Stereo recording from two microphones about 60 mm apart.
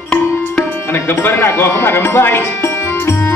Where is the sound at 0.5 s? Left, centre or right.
Left.